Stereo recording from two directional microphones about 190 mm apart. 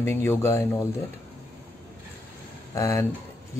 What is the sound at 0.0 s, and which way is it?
Speech, 10° left (ahead or behind).